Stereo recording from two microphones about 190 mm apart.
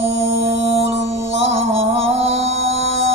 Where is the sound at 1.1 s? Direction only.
35° right (ahead or behind).